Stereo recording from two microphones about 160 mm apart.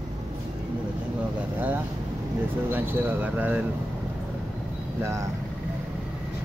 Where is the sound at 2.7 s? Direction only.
10° right (ahead or behind).